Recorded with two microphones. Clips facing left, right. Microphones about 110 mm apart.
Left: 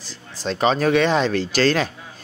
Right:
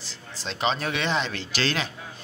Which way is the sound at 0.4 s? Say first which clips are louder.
Left 8 dB; 45° left (ahead or behind).